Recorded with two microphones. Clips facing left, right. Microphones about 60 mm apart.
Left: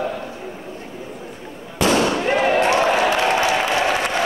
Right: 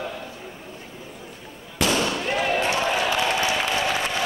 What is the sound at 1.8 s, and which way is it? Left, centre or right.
Fireworks, left.